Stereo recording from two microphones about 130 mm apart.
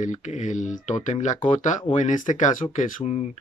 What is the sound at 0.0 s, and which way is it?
Speech, 70° left (ahead or behind).